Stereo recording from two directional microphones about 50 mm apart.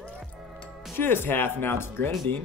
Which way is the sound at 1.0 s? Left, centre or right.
Left.